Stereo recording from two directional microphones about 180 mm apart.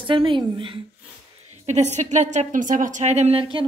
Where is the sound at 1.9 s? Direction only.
40° right (ahead or behind).